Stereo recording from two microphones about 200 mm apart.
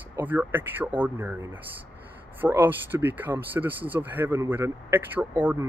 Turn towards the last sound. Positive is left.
turn(degrees=-10)  # may be behind; listen again after turning